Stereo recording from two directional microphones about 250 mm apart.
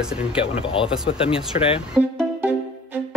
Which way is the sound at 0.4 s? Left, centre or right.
Left.